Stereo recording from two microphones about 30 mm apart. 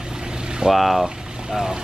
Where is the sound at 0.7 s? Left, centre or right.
Centre.